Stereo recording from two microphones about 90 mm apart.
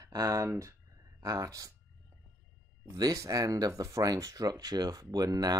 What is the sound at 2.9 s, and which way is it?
Speech, 40° right (ahead or behind).